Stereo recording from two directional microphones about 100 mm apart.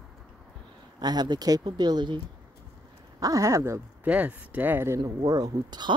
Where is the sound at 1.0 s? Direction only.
45° right (ahead or behind).